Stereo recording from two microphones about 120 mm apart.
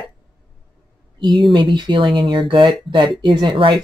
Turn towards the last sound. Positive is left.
turn(degrees=-40)  # may be behind; listen again after turning